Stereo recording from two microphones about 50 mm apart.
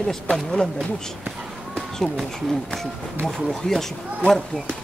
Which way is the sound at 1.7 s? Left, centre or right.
Centre.